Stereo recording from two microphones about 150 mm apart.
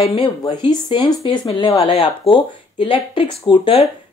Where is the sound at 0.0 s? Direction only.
40° left (ahead or behind).